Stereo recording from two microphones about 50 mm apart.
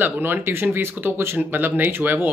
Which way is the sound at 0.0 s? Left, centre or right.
Right.